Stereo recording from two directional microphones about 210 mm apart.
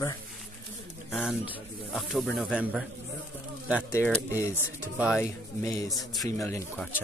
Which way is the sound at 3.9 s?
10° left (ahead or behind).